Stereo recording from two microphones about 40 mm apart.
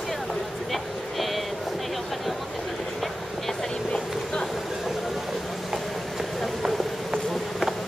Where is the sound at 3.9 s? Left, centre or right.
Centre.